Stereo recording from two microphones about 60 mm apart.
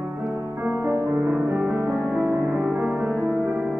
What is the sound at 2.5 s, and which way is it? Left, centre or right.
Music, right.